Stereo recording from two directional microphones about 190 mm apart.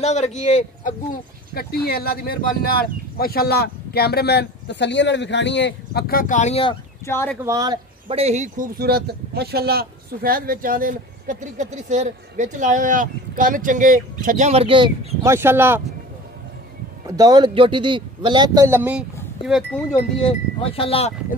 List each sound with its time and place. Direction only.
0.0 s speech: 35° left (ahead or behind)
7.1 s speech: 10° left (ahead or behind)
7.4 s speech: 20° right (ahead or behind)
8.1 s speech: 35° right (ahead or behind)
15.2 s speech: 10° right (ahead or behind)
17.0 s speech: 20° right (ahead or behind); by 19.8 s centre (ahead or behind)
20.7 s speech: 30° left (ahead or behind)